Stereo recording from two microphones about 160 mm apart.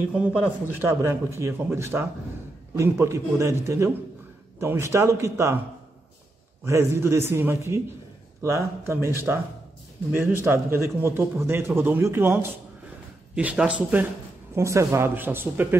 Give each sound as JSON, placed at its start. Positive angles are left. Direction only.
{"t": 0.1, "sound": "a man's voice", "side_deg": -10}
{"t": 6.6, "sound": "a man's voice", "side_deg": -15}
{"t": 10.4, "sound": "a man's voice", "side_deg": -15}
{"t": 14.5, "sound": "a man's voice", "side_deg": -20}